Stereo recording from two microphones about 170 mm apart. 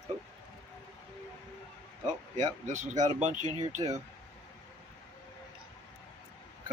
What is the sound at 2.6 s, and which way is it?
Speech, 45° right (ahead or behind).